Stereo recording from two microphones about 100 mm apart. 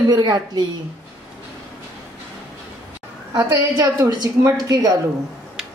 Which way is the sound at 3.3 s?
40° right (ahead or behind).